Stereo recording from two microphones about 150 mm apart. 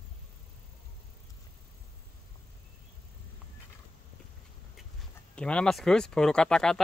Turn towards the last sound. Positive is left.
turn(degrees=5)  # may be behind; listen again after turning